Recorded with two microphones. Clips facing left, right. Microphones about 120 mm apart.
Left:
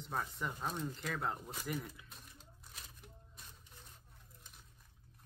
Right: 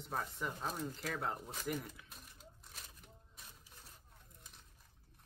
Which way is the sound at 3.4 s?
5° right (ahead or behind).